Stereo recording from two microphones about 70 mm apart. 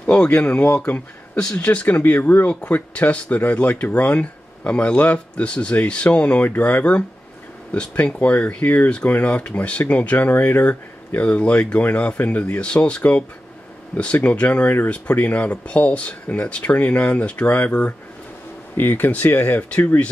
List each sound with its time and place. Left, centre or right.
0.0 s speech: centre